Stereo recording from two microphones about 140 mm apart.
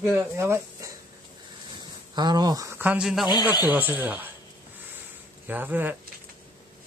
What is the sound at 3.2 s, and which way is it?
Speech, 30° left (ahead or behind).